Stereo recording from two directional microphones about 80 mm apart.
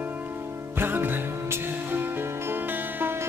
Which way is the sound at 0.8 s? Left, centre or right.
Right.